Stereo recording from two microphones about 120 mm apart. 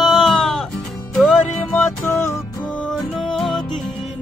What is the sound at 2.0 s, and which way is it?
Music, 25° left (ahead or behind).